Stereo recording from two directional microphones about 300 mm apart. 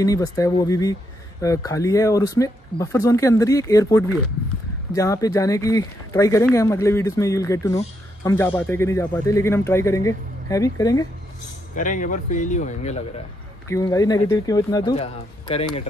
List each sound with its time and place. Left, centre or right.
0.0 s speech: centre
11.7 s speech: left
13.7 s speech: centre